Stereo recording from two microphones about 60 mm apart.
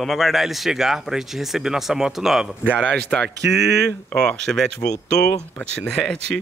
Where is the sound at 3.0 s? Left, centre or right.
Centre.